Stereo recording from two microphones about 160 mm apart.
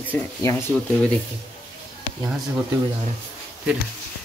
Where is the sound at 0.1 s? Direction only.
15° left (ahead or behind).